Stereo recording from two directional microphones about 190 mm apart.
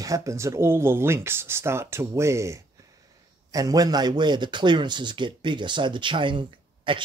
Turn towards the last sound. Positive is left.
turn(degrees=-25)  # may be behind; listen again after turning